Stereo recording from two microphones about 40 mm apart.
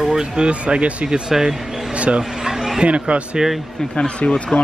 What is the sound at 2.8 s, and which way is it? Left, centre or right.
Speech, right.